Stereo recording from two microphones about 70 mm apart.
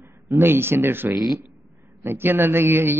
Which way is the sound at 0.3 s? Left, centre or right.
Right.